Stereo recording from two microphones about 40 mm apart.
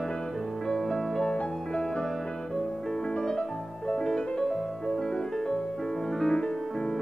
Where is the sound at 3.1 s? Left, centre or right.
Centre.